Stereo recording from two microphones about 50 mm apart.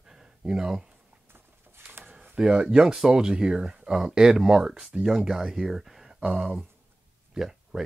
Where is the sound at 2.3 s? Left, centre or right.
Centre.